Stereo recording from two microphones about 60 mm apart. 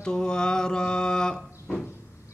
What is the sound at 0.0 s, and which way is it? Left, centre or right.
Mantra, centre.